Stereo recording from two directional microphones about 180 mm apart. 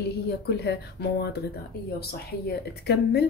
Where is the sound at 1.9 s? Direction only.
65° left (ahead or behind).